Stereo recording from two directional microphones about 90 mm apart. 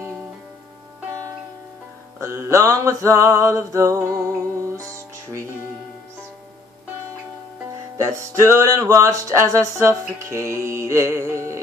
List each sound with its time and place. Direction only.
2.1 s music: 35° right (ahead or behind)
8.0 s music: 35° right (ahead or behind)